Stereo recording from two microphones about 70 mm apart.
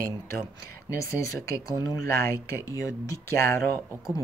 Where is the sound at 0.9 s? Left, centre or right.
Left.